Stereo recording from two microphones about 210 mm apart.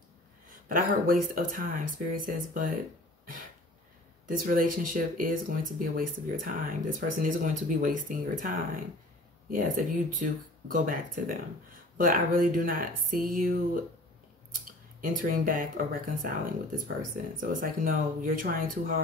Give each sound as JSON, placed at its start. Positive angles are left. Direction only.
{"t": 0.5, "sound": "speech", "side_deg": -40}
{"t": 4.3, "sound": "speech", "side_deg": -40}
{"t": 14.5, "sound": "scissors", "side_deg": -45}
{"t": 16.3, "sound": "speech", "side_deg": -40}